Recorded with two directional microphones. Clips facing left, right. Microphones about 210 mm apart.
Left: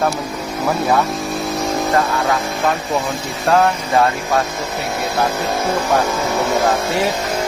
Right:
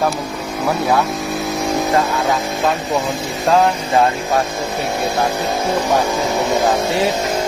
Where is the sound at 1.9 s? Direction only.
15° right (ahead or behind).